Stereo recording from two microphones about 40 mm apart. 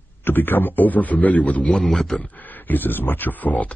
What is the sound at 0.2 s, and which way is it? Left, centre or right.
Speech, left.